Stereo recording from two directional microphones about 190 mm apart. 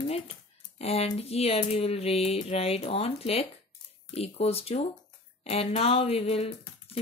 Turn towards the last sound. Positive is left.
turn(degrees=30)  # may be behind; listen again after turning